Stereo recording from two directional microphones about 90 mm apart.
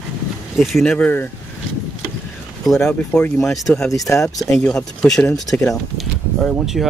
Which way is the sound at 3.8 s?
35° left (ahead or behind).